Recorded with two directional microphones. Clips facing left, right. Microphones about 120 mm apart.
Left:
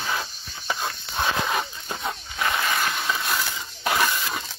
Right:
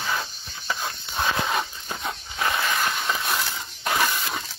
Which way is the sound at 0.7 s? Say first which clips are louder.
Left 1 dB; 5° left (ahead or behind).